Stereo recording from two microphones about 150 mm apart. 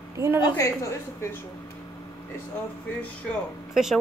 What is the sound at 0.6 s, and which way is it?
Speech, 20° left (ahead or behind).